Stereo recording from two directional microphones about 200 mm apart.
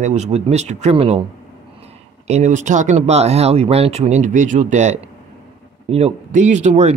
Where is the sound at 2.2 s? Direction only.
35° right (ahead or behind).